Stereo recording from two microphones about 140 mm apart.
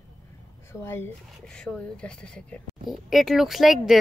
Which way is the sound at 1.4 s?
5° left (ahead or behind).